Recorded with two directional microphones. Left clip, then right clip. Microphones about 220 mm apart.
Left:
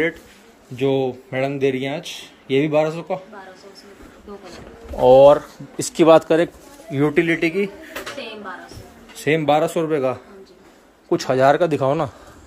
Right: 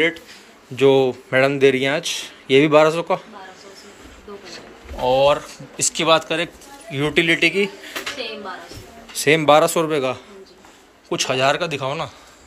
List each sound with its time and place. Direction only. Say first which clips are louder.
0.7 s speech: right 5 dB; 5° left (ahead or behind)
5.0 s speech: left 6 dB; 45° left (ahead or behind)
7.2 s speech: right 5 dB; 20° left (ahead or behind)
9.2 s speech: right 4 dB; 10° left (ahead or behind)
11.1 s speech: left 3 dB; 30° left (ahead or behind); by 12.1 s 45° left (ahead or behind)